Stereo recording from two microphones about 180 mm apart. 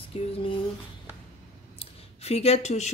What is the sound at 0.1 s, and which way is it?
Speech, 35° left (ahead or behind).